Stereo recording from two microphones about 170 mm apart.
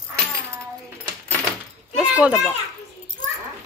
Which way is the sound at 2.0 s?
5° right (ahead or behind).